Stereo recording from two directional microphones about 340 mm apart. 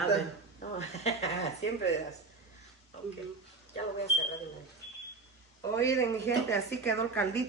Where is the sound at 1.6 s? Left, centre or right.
Left.